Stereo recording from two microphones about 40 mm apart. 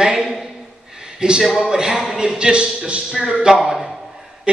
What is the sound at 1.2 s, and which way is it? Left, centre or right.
Speech, right.